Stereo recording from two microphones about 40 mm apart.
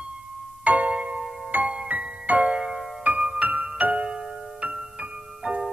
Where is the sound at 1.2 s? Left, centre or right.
Centre.